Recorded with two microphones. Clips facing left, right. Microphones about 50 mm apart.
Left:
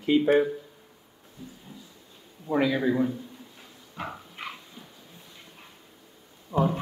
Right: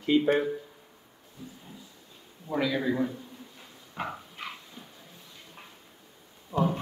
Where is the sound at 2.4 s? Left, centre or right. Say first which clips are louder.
Left 4 dB; centre.